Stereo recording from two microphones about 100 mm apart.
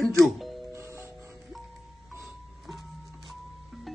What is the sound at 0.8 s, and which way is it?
Music, 30° right (ahead or behind).